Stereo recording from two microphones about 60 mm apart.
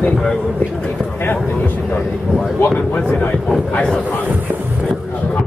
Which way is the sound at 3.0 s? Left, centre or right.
Centre.